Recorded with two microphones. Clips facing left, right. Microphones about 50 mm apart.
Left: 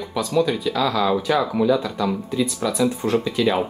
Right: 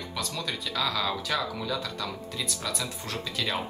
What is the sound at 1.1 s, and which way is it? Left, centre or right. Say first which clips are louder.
Speech: left 10 dB; centre.